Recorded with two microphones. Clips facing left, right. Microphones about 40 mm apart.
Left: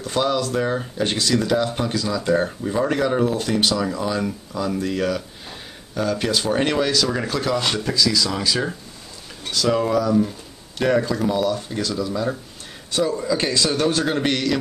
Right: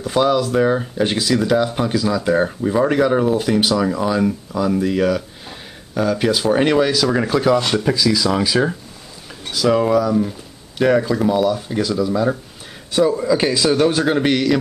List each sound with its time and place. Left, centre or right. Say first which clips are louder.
0.0 s speech: right 5 dB; centre